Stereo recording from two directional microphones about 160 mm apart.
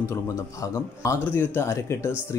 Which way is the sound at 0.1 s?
15° left (ahead or behind).